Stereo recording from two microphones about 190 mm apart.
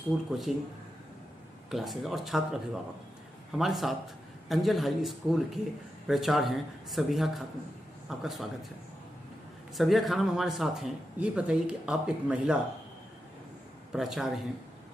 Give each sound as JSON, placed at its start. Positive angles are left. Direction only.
{"t": 0.5, "sound": "speech", "side_deg": 0}
{"t": 1.7, "sound": "speech", "side_deg": 0}
{"t": 9.8, "sound": "speech", "side_deg": 0}
{"t": 13.9, "sound": "speech", "side_deg": 0}